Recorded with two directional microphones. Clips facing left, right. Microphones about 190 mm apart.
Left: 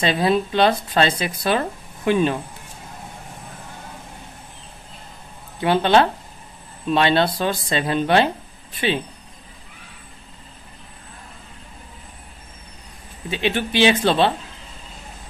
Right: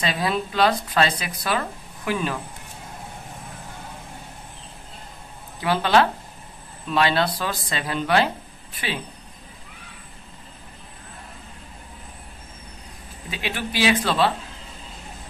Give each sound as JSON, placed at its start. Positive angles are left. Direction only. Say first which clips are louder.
{"t": 0.0, "sound": "speech", "louder": "left 6 dB", "side_deg": 25}
{"t": 5.6, "sound": "speech", "louder": "left 3 dB", "side_deg": 25}
{"t": 13.3, "sound": "speech", "louder": "left 7 dB", "side_deg": 25}